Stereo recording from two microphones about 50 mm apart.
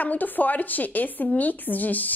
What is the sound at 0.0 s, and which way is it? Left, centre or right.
A woman's voice, left.